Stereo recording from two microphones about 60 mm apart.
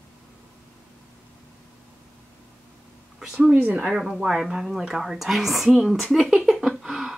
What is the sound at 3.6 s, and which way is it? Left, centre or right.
Speech, right.